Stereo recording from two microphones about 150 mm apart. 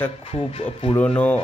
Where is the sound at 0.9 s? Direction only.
10° left (ahead or behind).